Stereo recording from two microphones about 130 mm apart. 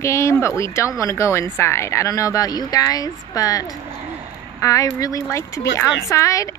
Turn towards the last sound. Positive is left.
turn(degrees=25)  # may be behind; listen again after turning